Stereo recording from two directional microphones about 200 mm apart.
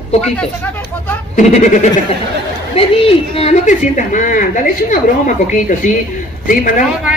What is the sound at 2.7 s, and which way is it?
A woman's voice, 30° left (ahead or behind).